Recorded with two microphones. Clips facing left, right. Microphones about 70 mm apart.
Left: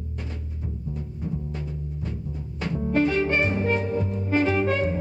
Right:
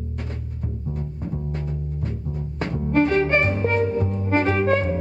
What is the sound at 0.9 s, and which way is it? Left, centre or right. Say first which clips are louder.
Music: right 1 dB; right.